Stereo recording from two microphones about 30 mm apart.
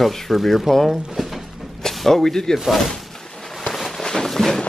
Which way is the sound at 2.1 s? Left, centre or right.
Centre.